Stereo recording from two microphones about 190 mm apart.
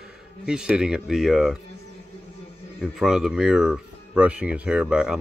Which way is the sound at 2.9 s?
Centre (ahead or behind).